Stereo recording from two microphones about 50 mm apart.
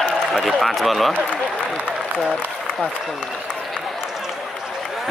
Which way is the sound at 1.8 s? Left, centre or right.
Centre.